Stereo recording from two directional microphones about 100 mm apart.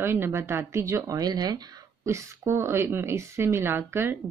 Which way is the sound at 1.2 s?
40° right (ahead or behind).